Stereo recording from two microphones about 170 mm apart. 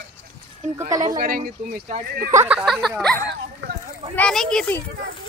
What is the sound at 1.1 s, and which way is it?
Speech, 55° right (ahead or behind).